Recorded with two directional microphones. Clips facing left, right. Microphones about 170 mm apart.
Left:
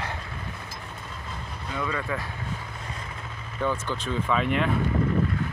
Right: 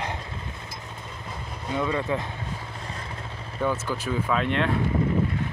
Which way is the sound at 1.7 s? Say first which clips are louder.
Right 4 dB; 20° right (ahead or behind).